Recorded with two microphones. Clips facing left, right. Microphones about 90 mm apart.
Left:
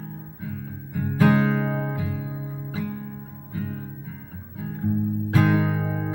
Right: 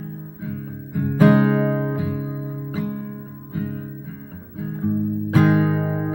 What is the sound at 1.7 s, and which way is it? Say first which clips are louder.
Music: right 5 dB; 35° right (ahead or behind).